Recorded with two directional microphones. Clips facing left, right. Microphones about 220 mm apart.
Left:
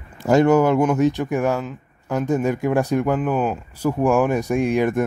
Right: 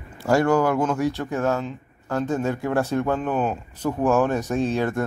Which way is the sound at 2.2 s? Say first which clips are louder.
Left 5 dB; 15° left (ahead or behind).